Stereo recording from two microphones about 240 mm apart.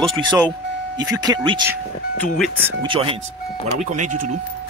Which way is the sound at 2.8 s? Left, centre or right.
Right.